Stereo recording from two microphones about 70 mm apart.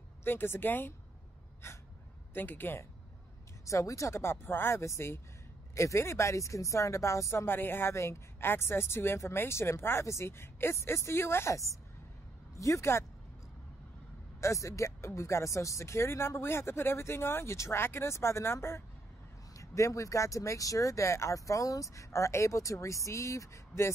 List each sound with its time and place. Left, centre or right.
0.2 s speech: left
2.3 s speech: left
3.6 s speech: left
14.4 s speech: left
19.5 s speech: left